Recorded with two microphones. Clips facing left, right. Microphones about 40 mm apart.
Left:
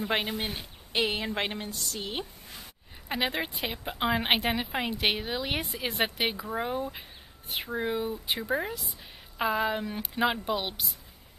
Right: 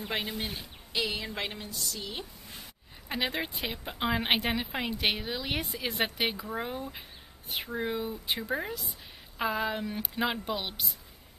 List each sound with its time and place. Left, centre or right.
0.1 s speech: left
0.5 s a woman's voice: left
3.1 s a woman's voice: centre